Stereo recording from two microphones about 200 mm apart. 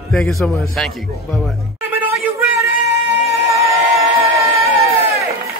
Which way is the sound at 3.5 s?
15° right (ahead or behind).